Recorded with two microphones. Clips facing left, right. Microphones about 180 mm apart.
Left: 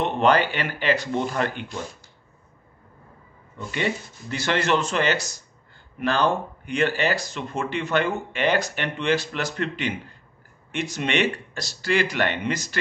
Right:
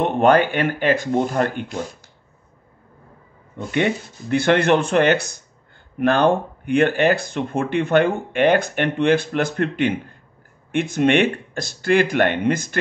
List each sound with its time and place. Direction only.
0.0 s speech: 50° right (ahead or behind)
3.5 s speech: 60° right (ahead or behind)